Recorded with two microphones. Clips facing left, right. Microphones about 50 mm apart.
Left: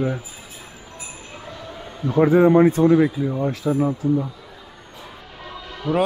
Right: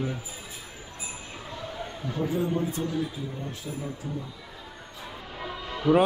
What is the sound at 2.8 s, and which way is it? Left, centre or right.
Speech, left.